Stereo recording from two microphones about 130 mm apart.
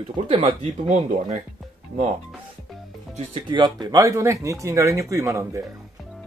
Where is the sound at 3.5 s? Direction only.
35° right (ahead or behind).